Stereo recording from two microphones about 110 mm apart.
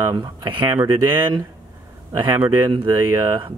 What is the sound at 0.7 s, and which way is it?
Speech, 30° right (ahead or behind).